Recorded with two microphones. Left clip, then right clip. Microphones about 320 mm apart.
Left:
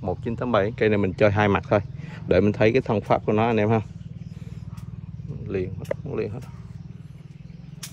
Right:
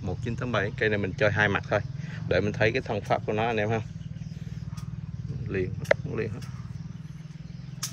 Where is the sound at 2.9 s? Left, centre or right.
Centre.